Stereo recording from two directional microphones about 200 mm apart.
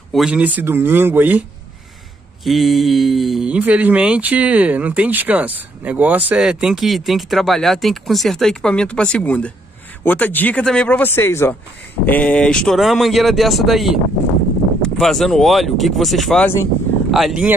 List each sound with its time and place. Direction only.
0.1 s speech: 5° right (ahead or behind)
2.4 s speech: centre (ahead or behind)